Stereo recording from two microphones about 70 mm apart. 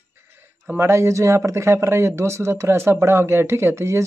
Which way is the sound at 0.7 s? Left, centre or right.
Right.